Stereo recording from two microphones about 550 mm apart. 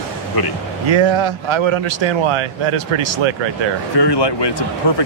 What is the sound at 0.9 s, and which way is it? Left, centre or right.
Speech, right.